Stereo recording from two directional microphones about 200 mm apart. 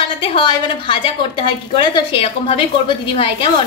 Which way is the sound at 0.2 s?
25° left (ahead or behind).